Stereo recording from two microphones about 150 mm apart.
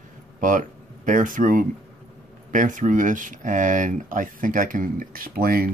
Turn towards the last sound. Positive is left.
turn(degrees=-80)